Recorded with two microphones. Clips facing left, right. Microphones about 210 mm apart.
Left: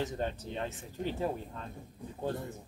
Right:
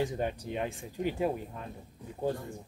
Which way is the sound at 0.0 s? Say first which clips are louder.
Right 3 dB; 15° right (ahead or behind).